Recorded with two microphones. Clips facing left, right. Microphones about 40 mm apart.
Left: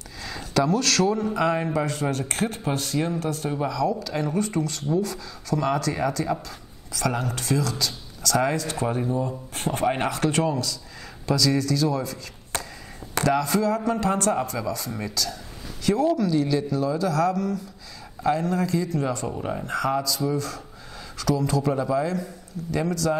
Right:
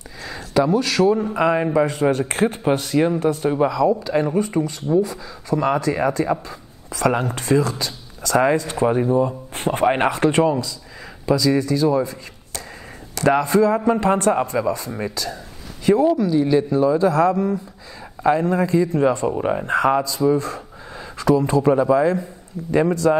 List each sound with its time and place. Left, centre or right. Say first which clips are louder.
0.2 s speech: right 4 dB; centre
13.2 s speech: right 6 dB; right